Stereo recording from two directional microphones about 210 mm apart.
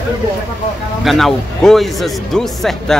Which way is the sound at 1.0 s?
Centre (ahead or behind).